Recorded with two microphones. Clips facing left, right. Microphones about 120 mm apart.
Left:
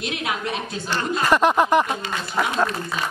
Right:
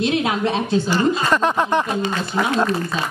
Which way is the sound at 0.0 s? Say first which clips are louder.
Right 8 dB; 30° right (ahead or behind).